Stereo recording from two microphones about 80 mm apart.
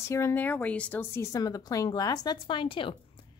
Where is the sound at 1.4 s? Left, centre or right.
Left.